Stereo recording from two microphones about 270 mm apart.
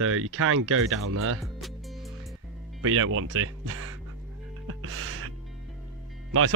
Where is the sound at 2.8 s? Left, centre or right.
Right.